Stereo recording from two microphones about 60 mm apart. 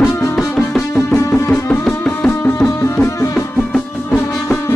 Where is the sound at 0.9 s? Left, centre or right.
Left.